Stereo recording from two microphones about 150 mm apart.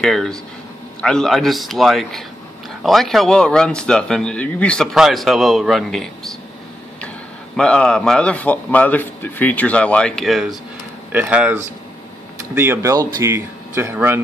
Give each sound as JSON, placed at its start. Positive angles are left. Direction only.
{"t": 0.0, "sound": "speech", "side_deg": 5}
{"t": 7.5, "sound": "a man's voice", "side_deg": 5}